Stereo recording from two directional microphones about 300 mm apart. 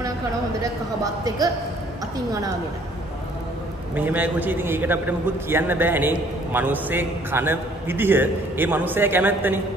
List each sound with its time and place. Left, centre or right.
0.6 s a man's voice: centre
3.9 s a man's voice: centre